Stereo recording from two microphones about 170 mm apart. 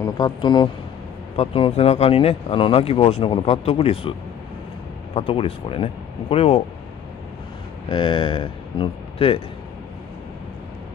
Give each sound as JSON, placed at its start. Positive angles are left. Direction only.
{"t": 0.0, "sound": "speech", "side_deg": 25}
{"t": 5.1, "sound": "speech", "side_deg": 35}
{"t": 7.9, "sound": "speech", "side_deg": 30}